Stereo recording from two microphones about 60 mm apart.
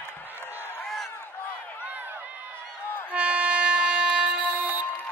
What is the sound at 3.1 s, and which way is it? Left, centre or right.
Train, right.